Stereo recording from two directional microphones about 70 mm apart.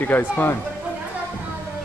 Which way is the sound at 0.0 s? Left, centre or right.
Left.